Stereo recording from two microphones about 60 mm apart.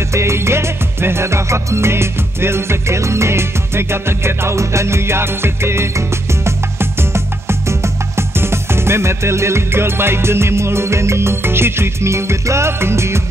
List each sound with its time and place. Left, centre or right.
0.1 s music: right